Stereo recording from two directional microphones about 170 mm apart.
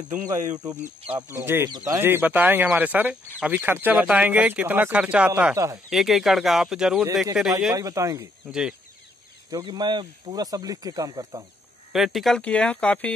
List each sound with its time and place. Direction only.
0.1 s speech: 20° right (ahead or behind)
5.9 s speech: centre (ahead or behind)
7.7 s speech: 20° right (ahead or behind)
8.5 s speech: 5° right (ahead or behind)
9.5 s speech: 25° right (ahead or behind)
11.9 s speech: centre (ahead or behind)